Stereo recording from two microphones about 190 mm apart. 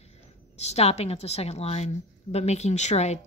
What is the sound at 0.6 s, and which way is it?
Speech, 35° left (ahead or behind).